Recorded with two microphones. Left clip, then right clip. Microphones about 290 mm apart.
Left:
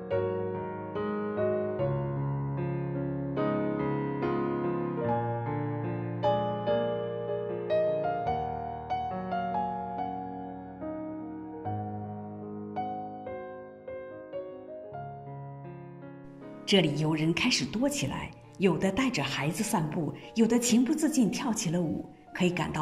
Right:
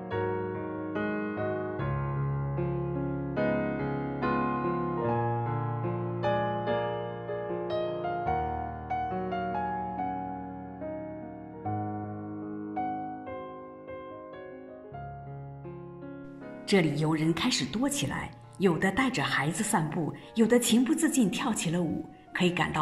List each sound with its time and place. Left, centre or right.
0.1 s music: centre
3.3 s music: centre
16.6 s speech: centre